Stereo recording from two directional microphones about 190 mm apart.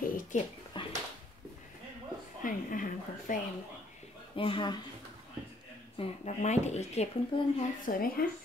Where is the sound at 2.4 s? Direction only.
45° left (ahead or behind).